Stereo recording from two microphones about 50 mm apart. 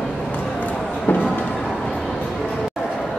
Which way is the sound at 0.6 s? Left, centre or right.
Left.